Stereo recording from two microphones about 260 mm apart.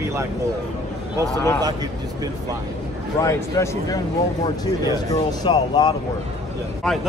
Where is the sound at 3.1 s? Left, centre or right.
Centre.